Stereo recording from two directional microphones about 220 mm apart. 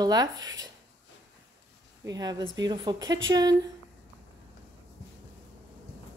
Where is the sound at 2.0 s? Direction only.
15° right (ahead or behind).